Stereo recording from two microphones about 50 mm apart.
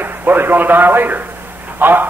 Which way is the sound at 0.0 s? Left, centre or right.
Right.